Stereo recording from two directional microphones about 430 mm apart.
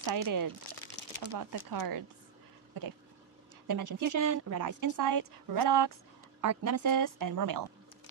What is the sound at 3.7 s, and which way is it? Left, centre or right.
A woman's voice, right.